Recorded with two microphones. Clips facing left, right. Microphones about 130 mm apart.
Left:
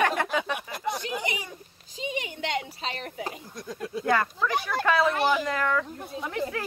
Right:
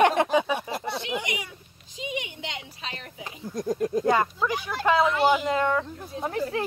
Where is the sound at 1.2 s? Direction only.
35° left (ahead or behind).